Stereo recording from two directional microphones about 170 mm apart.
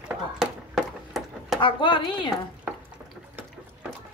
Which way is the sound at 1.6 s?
30° left (ahead or behind).